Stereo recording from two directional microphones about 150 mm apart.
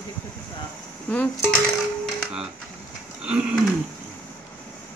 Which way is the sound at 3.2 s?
5° right (ahead or behind).